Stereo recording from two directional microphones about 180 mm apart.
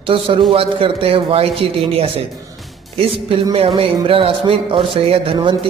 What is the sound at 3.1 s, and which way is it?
Speech, 30° right (ahead or behind).